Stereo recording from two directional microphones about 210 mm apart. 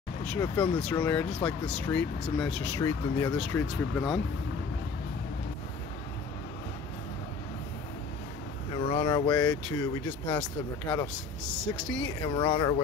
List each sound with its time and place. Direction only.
0.4 s speech: 5° left (ahead or behind)
8.7 s speech: 25° left (ahead or behind)
9.3 s speech: 10° left (ahead or behind)
12.3 s speech: 25° left (ahead or behind)